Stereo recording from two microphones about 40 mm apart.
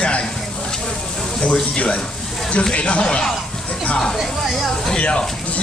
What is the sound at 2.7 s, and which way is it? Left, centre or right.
Speech, left.